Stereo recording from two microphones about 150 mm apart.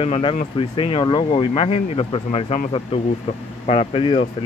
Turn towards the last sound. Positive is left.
turn(degrees=35)  # may be behind; listen again after turning